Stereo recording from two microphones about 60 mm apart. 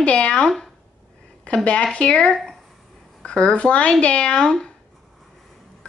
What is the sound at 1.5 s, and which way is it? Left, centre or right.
Speech, left.